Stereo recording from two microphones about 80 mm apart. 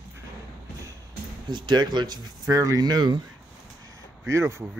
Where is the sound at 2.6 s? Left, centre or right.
Right.